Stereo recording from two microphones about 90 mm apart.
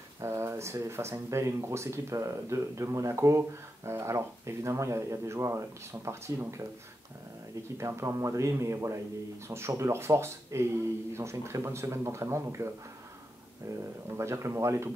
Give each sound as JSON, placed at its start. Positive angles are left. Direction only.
{"t": 0.2, "sound": "speech", "side_deg": -30}
{"t": 7.7, "sound": "speech", "side_deg": -30}